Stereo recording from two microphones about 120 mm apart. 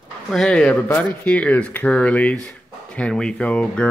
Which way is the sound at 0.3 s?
5° left (ahead or behind).